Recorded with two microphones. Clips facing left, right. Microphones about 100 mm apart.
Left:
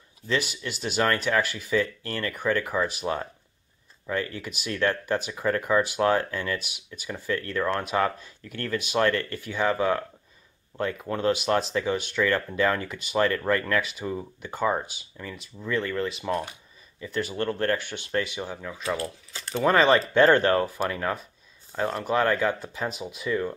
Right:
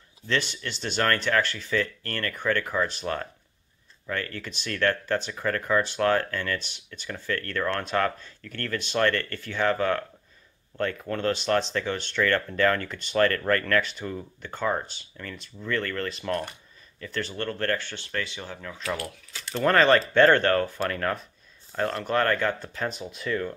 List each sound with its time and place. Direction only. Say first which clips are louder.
0.3 s speech: left 1 dB; 10° left (ahead or behind)
18.8 s speech: left 2 dB; 25° left (ahead or behind)
19.5 s speech: even; 10° left (ahead or behind)